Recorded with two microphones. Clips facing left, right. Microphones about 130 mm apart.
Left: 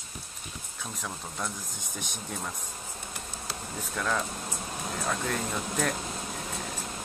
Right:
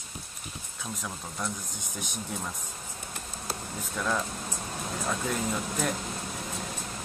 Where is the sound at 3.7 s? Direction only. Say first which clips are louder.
Even; centre (ahead or behind).